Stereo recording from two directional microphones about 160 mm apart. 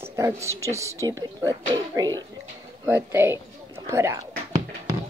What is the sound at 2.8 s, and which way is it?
Speech, 10° right (ahead or behind).